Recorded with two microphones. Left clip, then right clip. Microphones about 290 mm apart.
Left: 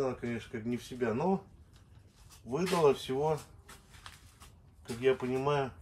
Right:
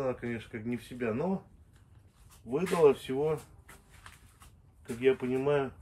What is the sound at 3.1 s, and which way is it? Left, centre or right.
Speech, centre.